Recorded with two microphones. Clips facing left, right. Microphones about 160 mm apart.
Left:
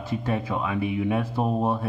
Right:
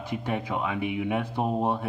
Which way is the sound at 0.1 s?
15° right (ahead or behind).